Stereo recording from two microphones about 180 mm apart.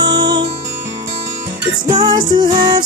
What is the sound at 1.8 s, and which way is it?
Music, 25° right (ahead or behind).